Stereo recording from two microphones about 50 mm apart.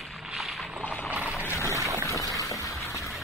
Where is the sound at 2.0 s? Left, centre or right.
Left.